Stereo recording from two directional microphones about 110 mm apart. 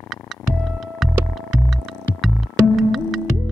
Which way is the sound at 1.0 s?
Centre (ahead or behind).